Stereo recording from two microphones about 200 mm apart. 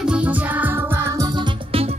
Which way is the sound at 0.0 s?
5° right (ahead or behind).